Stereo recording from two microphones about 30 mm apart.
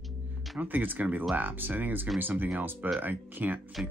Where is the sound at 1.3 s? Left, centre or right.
Right.